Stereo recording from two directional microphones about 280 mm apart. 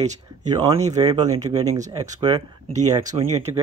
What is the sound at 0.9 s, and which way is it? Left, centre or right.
Speech, centre.